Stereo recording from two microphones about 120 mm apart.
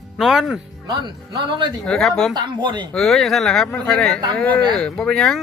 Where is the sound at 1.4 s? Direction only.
40° right (ahead or behind).